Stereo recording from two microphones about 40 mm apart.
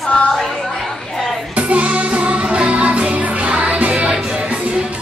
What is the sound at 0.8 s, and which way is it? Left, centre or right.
Chatter, centre.